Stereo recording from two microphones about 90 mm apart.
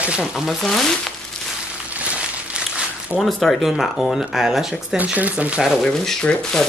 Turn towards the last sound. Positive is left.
turn(degrees=10)  # may be behind; listen again after turning